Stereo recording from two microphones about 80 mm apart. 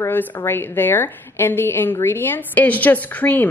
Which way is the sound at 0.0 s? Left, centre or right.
Left.